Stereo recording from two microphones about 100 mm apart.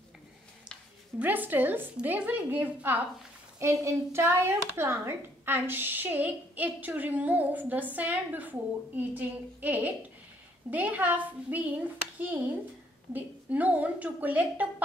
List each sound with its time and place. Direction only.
1.2 s a woman's voice: 15° right (ahead or behind)
3.5 s a woman's voice: 30° right (ahead or behind)
13.1 s a woman's voice: 15° right (ahead or behind)